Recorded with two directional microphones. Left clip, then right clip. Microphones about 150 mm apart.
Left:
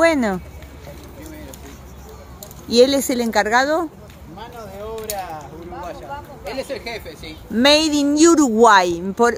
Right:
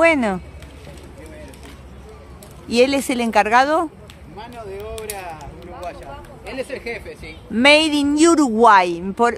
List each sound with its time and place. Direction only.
0.0 s speech: centre (ahead or behind)
2.7 s speech: centre (ahead or behind)
5.0 s a sound: 50° right (ahead or behind)
6.5 s a woman's voice: 15° right (ahead or behind); by 9.3 s 5° left (ahead or behind)